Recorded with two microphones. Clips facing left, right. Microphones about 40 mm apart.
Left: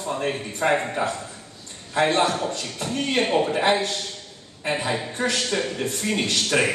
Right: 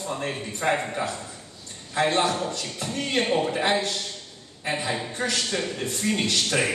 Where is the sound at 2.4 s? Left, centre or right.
Centre.